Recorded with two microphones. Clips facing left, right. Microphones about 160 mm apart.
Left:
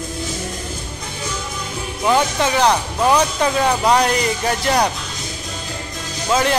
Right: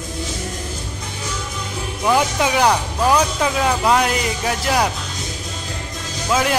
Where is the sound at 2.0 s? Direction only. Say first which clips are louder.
Left 1 dB; 10° right (ahead or behind).